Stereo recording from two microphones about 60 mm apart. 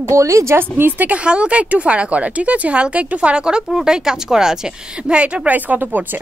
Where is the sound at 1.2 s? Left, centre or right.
Centre.